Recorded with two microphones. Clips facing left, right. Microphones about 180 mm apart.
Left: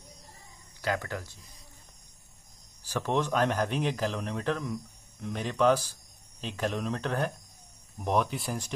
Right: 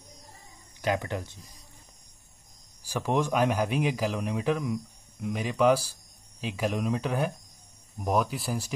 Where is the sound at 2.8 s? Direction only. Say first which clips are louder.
Right 2 dB; 10° right (ahead or behind).